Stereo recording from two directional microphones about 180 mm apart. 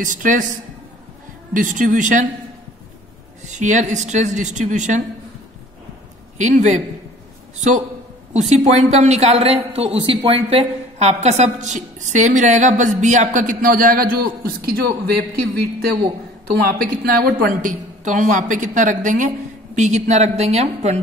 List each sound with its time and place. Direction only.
0.0 s a woman's voice: 45° right (ahead or behind)
1.5 s a woman's voice: 45° right (ahead or behind)
3.4 s speech: 40° right (ahead or behind)
6.3 s a man's voice: 40° right (ahead or behind)
8.3 s a woman's voice: 40° right (ahead or behind)